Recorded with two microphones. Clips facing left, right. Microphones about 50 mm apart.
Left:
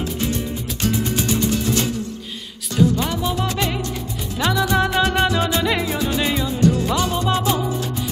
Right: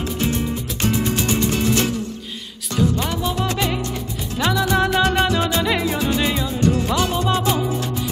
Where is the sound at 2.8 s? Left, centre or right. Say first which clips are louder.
Left 2 dB; centre.